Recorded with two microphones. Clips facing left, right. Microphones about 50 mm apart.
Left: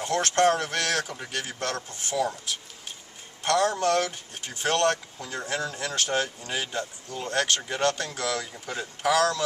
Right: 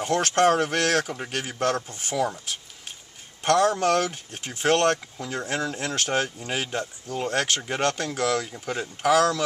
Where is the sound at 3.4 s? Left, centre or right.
Centre.